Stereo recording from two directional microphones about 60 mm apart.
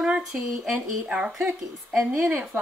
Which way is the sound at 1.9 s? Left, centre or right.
Centre.